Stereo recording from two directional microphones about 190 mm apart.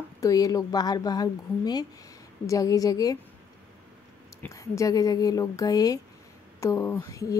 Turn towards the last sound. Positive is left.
turn(degrees=15)  # may be behind; listen again after turning